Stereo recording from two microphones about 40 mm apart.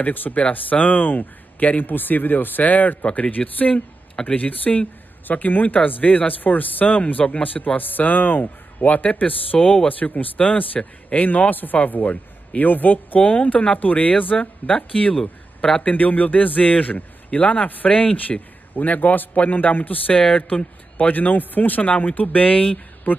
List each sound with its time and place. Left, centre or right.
0.0 s speech: left
3.7 s speech: centre
4.4 s a man's voice: left
8.7 s a man's voice: left
13.2 s a man's voice: left
15.8 s a man's voice: left
21.0 s speech: left
23.1 s speech: left